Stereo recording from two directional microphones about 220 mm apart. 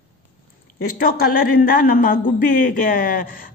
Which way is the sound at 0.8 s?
40° left (ahead or behind).